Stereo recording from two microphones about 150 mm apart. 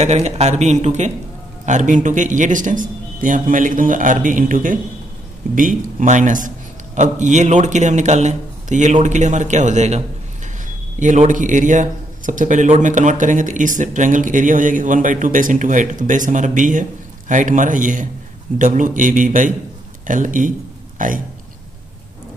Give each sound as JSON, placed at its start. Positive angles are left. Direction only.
{"t": 0.0, "sound": "a man's voice", "side_deg": -50}